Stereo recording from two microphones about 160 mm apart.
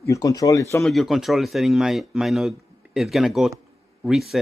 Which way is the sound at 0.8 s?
Centre (ahead or behind).